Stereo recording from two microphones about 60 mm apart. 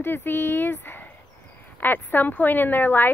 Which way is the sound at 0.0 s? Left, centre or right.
Left.